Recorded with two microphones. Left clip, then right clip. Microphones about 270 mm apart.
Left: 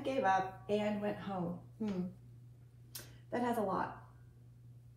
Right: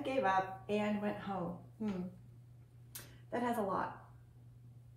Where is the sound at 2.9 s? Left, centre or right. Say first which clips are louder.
Left 1 dB; centre.